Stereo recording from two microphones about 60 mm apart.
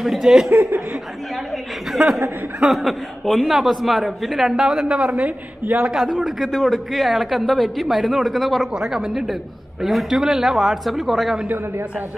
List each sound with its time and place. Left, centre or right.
0.0 s speech: centre
0.5 s speech: right
1.9 s speech: centre
5.1 s a man's voice: right
5.9 s speech: centre